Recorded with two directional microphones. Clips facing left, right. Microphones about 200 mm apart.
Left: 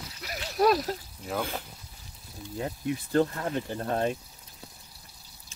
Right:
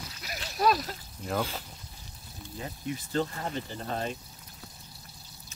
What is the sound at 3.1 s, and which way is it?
Speech, 55° left (ahead or behind).